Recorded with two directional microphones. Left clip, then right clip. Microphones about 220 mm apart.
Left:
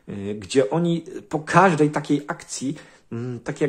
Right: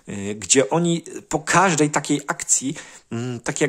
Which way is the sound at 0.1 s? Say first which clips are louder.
Right 2 dB; 30° right (ahead or behind).